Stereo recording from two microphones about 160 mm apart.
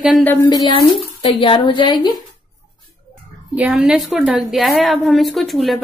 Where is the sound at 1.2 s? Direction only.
30° left (ahead or behind).